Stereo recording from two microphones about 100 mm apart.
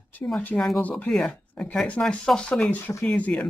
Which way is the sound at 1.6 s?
15° left (ahead or behind).